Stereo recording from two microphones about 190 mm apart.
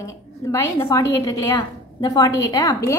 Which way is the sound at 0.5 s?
20° left (ahead or behind).